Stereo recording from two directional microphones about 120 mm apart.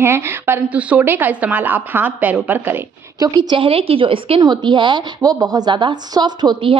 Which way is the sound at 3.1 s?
35° right (ahead or behind).